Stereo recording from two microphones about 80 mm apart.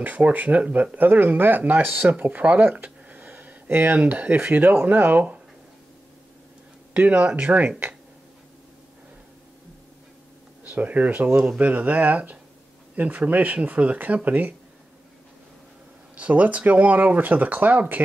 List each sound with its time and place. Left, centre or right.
0.0 s speech: centre
6.9 s speech: centre
10.6 s speech: centre
16.2 s speech: centre